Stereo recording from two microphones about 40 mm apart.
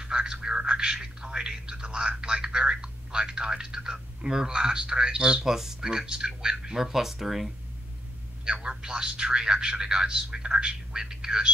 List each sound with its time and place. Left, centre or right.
0.0 s a man's voice: centre
8.5 s a man's voice: right